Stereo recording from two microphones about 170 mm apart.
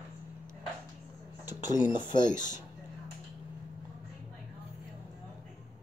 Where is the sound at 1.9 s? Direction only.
25° left (ahead or behind).